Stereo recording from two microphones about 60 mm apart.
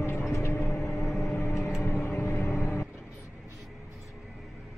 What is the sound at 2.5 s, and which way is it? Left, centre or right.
Vehicle, left.